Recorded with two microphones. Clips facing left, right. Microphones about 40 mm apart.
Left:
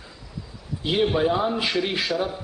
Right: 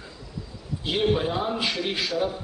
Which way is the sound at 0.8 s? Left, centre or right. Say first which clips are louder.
Left 3 dB; centre.